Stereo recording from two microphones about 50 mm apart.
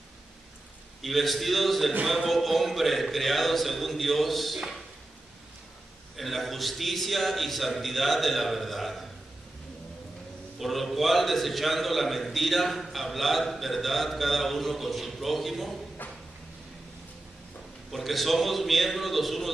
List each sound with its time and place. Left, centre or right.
1.0 s a man's voice: centre
6.1 s a man's voice: centre
10.6 s a man's voice: centre
16.0 s a sound: left
17.9 s a man's voice: centre